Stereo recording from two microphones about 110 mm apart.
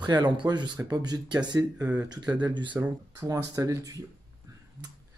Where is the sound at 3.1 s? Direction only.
30° right (ahead or behind).